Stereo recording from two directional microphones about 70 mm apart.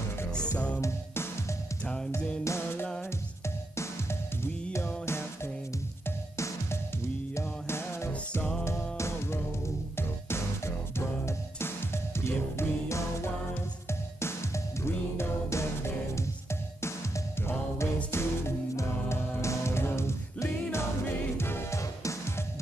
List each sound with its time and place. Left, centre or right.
0.7 s music: left
17.5 s music: left